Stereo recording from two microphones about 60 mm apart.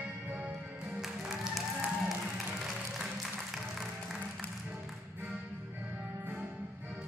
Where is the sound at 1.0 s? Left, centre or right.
Centre.